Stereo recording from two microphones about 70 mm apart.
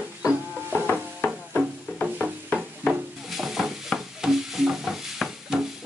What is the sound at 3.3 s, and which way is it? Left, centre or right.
Stir, centre.